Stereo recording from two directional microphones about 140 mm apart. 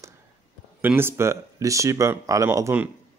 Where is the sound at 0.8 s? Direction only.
15° right (ahead or behind).